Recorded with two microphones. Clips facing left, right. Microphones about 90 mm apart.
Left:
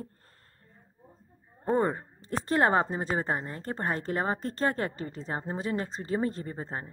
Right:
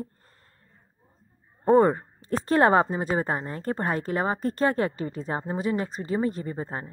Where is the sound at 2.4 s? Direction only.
25° right (ahead or behind).